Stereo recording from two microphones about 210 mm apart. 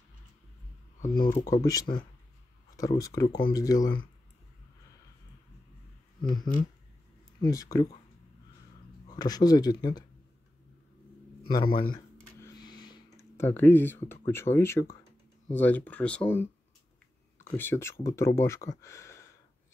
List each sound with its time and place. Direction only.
1.0 s speech: 45° left (ahead or behind)
1.5 s speech: 15° left (ahead or behind)
3.3 s speech: 45° left (ahead or behind)
3.5 s speech: 15° left (ahead or behind)
6.2 s speech: 20° left (ahead or behind)
9.0 s speech: 20° left (ahead or behind)
11.4 s a sound: 20° left (ahead or behind)
15.5 s speech: 10° left (ahead or behind)